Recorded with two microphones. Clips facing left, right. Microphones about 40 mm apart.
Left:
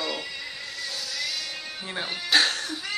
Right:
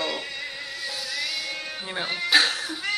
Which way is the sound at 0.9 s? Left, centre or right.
Centre.